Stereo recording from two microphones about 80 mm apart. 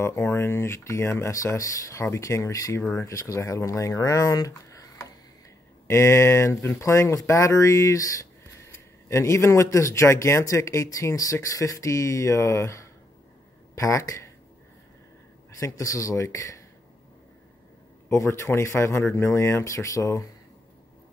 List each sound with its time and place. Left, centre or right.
0.0 s speech: left
5.9 s speech: left
15.6 s speech: left
18.1 s speech: left